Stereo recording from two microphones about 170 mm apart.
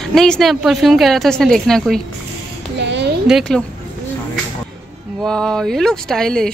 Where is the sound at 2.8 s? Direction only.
90° right.